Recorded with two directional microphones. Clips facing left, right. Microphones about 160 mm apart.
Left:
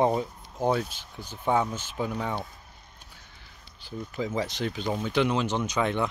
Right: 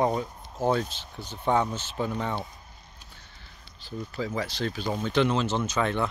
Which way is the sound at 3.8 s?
15° left (ahead or behind).